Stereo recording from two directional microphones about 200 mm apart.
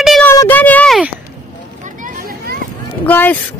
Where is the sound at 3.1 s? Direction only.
10° left (ahead or behind).